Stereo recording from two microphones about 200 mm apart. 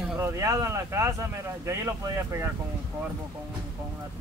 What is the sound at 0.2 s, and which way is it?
Speech, 15° right (ahead or behind).